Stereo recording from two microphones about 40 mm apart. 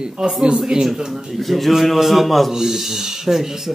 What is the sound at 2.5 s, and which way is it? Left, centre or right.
Speech, centre.